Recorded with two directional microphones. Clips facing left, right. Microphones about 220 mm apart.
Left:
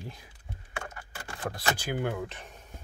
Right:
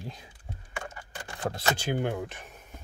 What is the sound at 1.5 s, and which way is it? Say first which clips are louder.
Speech: right 3 dB; 25° right (ahead or behind).